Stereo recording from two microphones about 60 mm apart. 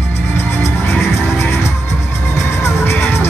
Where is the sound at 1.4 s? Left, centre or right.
Left.